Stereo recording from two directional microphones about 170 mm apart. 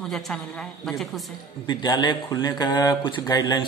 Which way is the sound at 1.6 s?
25° left (ahead or behind).